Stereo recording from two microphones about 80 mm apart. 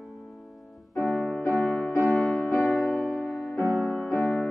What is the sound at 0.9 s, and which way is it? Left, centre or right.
Music, centre.